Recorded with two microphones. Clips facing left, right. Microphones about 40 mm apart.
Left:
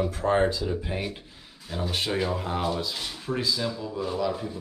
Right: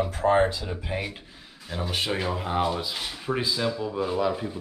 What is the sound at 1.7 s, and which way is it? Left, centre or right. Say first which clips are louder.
Speech: even; centre.